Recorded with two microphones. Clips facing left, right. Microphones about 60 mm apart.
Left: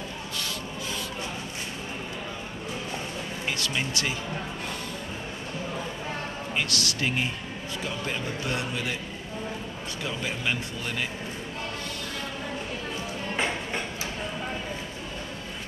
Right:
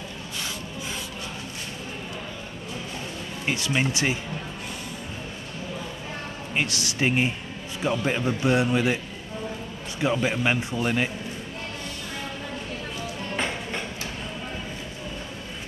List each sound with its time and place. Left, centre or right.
3.4 s a man's voice: right
6.5 s a man's voice: right
10.0 s a man's voice: right